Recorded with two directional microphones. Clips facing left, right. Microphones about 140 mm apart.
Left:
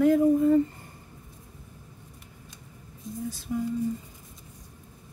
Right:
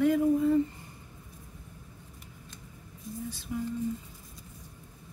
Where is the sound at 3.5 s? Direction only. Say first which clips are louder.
Left 4 dB; 40° left (ahead or behind).